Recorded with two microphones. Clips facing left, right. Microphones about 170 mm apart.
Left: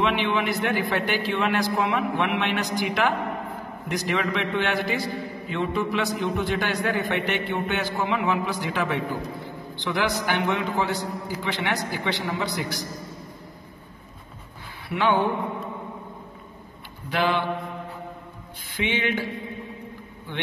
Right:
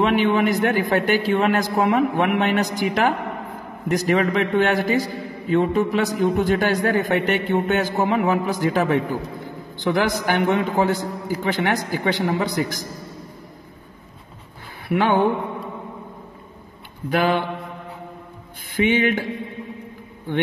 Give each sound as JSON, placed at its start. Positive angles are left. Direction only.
{"t": 0.0, "sound": "a man's voice", "side_deg": -45}
{"t": 14.9, "sound": "a man's voice", "side_deg": -50}
{"t": 17.1, "sound": "a man's voice", "side_deg": -50}
{"t": 18.8, "sound": "a man's voice", "side_deg": -50}
{"t": 20.3, "sound": "a man's voice", "side_deg": -50}